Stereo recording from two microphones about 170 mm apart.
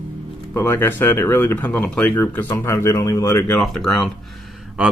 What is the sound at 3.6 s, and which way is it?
Speech, centre (ahead or behind).